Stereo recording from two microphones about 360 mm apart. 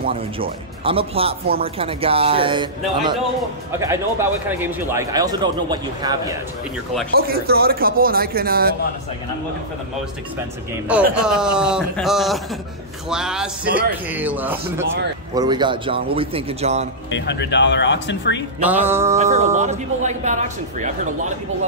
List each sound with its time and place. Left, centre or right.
0.0 s speech: centre
7.2 s speech: right
10.9 s speech: centre
17.1 s speech: left
18.6 s speech: centre
19.1 s speech: centre